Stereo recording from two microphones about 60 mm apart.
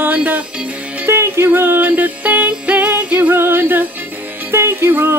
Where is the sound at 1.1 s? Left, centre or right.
Right.